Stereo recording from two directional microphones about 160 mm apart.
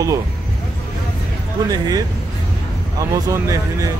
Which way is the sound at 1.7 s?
20° right (ahead or behind).